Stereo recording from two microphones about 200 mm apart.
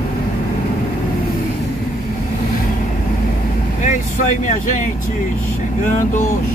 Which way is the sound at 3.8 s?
40° left (ahead or behind).